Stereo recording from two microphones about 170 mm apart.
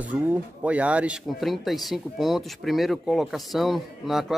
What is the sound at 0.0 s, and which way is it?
A man's voice, 10° right (ahead or behind).